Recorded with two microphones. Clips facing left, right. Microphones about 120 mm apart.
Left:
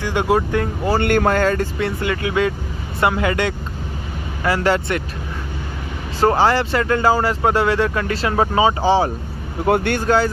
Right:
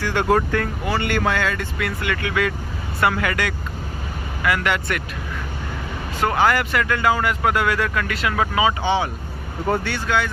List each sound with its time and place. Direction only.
0.0 s speech: 15° left (ahead or behind)
0.8 s speech: 45° left (ahead or behind)
1.9 s speech: 25° left (ahead or behind)
6.2 s speech: 30° left (ahead or behind)
9.7 s speech: 55° left (ahead or behind)
10.0 s speech: 35° left (ahead or behind)